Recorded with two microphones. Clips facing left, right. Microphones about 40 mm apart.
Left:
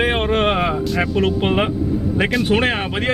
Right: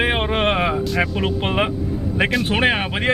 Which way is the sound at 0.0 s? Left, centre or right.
Centre.